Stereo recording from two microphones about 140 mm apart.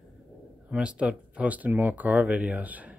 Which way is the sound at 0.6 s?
10° right (ahead or behind).